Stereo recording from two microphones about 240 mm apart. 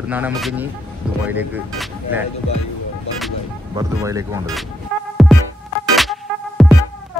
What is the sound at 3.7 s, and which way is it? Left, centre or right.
Speech, centre.